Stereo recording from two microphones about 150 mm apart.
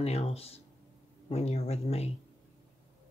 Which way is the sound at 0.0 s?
45° left (ahead or behind).